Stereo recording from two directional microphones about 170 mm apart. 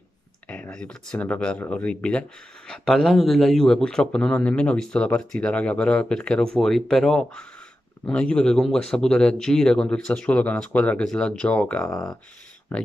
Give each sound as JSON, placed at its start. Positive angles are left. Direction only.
{"t": 0.5, "sound": "speech", "side_deg": 5}